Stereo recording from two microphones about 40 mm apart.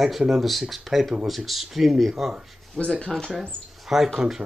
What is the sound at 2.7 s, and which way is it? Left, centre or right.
Speech, left.